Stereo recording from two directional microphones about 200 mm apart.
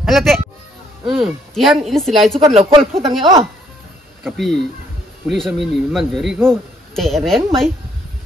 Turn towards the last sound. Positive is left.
turn(degrees=0)  # may be behind; listen again after turning